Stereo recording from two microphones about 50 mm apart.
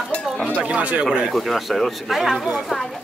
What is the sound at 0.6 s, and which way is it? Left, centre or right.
Speech, right.